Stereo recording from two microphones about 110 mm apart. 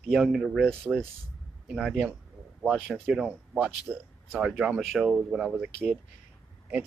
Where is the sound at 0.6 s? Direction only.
10° left (ahead or behind).